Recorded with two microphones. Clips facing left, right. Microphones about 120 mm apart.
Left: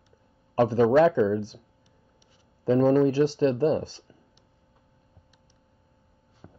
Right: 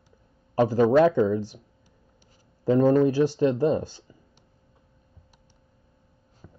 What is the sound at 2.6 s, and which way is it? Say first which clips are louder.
Speech: right 1 dB; 15° right (ahead or behind).